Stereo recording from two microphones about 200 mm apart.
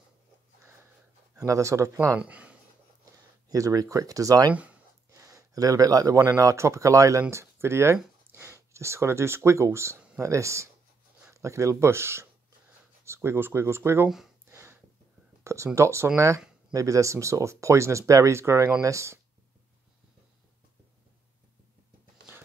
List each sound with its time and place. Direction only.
1.3 s speech: 15° right (ahead or behind)
3.4 s speech: 15° right (ahead or behind)
14.4 s a sound: 15° right (ahead or behind)
15.4 s speech: 15° right (ahead or behind)